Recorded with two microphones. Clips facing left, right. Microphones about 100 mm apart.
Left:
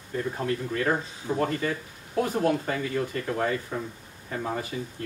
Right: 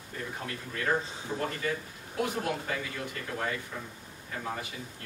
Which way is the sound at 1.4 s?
40° left (ahead or behind).